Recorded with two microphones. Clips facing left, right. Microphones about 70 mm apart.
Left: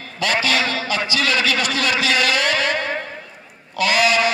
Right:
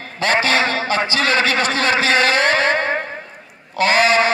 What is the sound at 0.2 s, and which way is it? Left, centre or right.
A man's voice, right.